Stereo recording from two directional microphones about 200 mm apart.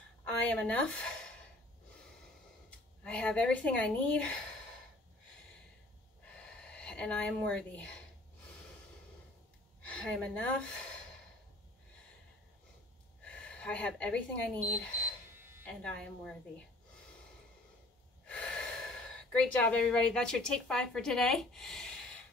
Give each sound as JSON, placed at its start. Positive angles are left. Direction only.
{"t": 0.3, "sound": "a woman's voice", "side_deg": 5}
{"t": 3.0, "sound": "a woman's voice", "side_deg": 5}
{"t": 6.6, "sound": "speech", "side_deg": 5}
{"t": 9.8, "sound": "a woman's voice", "side_deg": 5}
{"t": 13.2, "sound": "speech", "side_deg": 5}
{"t": 15.6, "sound": "a woman's voice", "side_deg": 5}
{"t": 18.2, "sound": "speech", "side_deg": 5}